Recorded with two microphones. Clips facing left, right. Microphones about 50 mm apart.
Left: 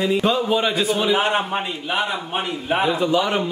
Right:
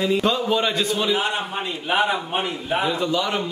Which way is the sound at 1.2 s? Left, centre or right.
Left.